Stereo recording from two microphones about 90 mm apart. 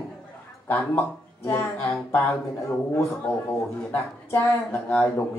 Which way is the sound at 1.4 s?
25° left (ahead or behind).